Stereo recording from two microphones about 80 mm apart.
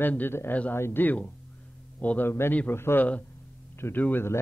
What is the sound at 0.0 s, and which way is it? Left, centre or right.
Speech, left.